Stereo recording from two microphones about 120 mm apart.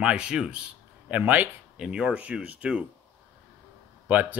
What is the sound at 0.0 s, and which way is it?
A man's voice, 5° right (ahead or behind).